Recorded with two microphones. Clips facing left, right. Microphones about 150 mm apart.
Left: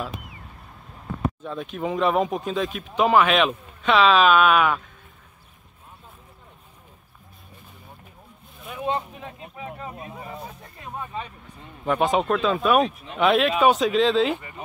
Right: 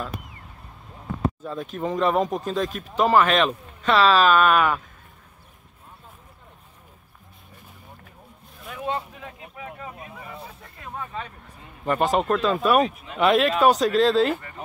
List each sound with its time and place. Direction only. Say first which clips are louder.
1.4 s speech: even; centre (ahead or behind)
8.6 s speech: left 2 dB; 20° left (ahead or behind)
10.9 s speech: left 1 dB; 15° left (ahead or behind)
11.8 s speech: even; centre (ahead or behind)